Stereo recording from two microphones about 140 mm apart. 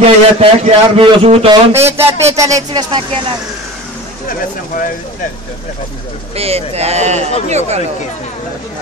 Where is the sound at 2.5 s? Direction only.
35° right (ahead or behind).